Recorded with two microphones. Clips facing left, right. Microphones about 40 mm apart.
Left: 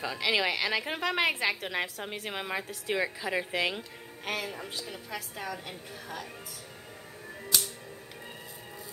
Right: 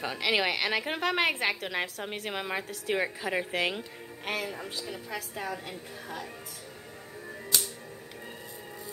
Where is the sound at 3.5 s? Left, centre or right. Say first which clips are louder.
Right 1 dB; centre.